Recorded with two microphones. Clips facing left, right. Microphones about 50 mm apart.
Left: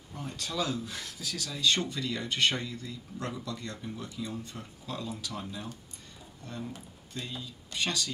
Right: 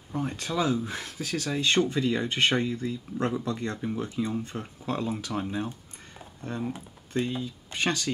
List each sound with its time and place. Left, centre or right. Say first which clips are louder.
0.1 s speech: right 7 dB; right